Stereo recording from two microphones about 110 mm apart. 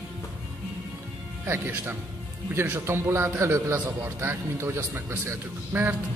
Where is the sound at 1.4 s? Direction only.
20° right (ahead or behind).